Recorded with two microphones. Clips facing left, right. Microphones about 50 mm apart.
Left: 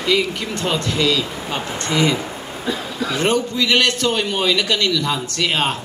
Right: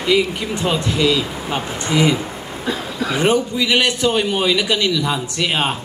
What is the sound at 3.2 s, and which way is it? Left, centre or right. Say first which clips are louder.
A man's voice: right 2 dB; centre.